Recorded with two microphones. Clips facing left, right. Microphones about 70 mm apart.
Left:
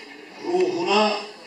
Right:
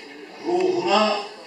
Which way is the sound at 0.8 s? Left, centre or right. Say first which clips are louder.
Even; right.